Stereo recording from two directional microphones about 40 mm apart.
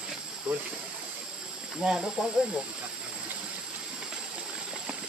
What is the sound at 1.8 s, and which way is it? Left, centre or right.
Speech, centre.